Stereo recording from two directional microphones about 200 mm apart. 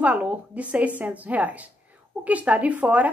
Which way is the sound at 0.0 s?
5° right (ahead or behind).